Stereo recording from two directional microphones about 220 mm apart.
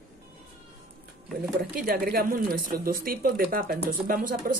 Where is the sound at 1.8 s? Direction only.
45° right (ahead or behind).